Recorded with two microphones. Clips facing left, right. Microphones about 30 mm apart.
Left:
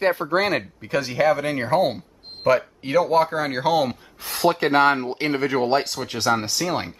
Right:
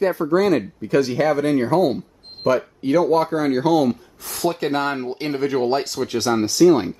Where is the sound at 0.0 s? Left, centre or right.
Left.